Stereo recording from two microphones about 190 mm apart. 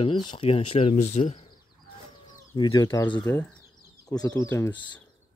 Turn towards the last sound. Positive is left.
turn(degrees=15)  # may be behind; listen again after turning